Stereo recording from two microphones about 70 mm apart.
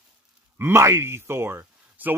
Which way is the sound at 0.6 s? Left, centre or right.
Right.